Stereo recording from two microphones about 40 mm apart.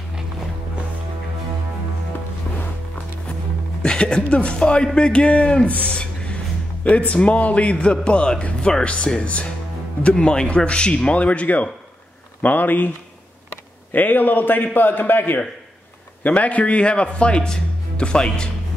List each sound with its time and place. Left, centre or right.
3.8 s speech: left
5.7 s a sound: left
6.8 s speech: left
11.1 s a man's voice: left
13.9 s a man's voice: left
16.3 s speech: left